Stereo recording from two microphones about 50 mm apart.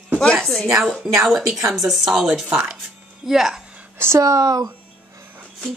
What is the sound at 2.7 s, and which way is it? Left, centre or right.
Speech, centre.